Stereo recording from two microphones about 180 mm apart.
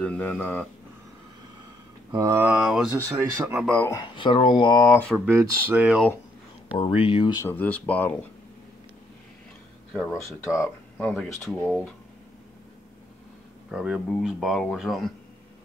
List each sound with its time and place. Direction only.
0.0 s speech: 5° left (ahead or behind)
2.1 s speech: 15° right (ahead or behind); by 3.9 s 5° left (ahead or behind)
3.9 s speech: 25° left (ahead or behind)
4.9 s speech: 5° left (ahead or behind)
5.2 s speech: 15° right (ahead or behind)
6.8 s speech: 30° left (ahead or behind)
7.4 s speech: 10° left (ahead or behind)
9.9 s speech: centre (ahead or behind)
13.7 s speech: 5° right (ahead or behind)